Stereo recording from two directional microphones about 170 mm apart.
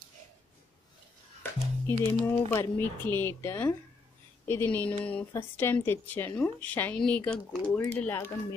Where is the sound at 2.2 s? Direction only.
10° left (ahead or behind).